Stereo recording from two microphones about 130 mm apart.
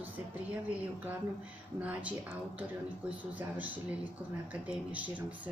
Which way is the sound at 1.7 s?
10° right (ahead or behind).